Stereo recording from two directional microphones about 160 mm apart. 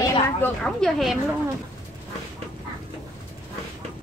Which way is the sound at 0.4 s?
5° left (ahead or behind).